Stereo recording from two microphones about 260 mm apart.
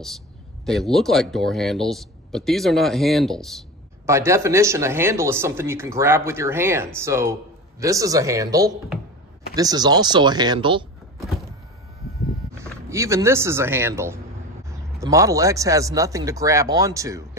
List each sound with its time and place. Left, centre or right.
0.7 s speech: centre
4.0 s speech: centre
12.5 s speech: centre